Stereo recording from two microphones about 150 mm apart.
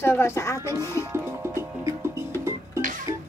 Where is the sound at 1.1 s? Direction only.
15° right (ahead or behind).